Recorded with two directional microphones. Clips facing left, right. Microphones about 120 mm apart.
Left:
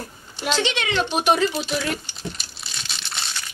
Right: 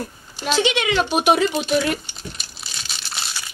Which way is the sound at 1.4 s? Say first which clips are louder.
Right 4 dB; centre (ahead or behind).